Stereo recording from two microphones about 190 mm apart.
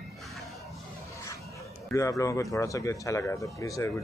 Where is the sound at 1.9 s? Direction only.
15° left (ahead or behind).